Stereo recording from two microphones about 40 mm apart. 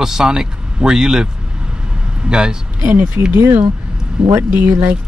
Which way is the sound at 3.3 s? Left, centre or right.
Right.